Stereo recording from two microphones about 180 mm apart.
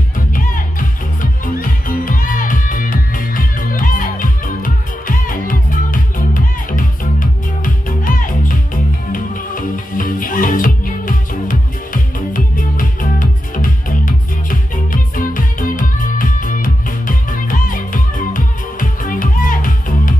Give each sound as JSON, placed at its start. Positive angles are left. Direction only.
{"t": 0.4, "sound": "music", "side_deg": 50}